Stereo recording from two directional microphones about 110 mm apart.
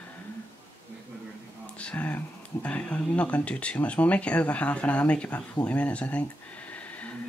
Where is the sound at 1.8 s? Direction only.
15° left (ahead or behind).